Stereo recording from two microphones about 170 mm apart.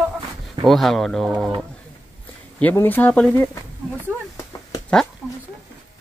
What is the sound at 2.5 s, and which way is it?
Speech, 10° left (ahead or behind).